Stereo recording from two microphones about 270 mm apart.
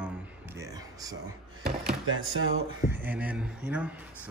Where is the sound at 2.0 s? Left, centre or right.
Right.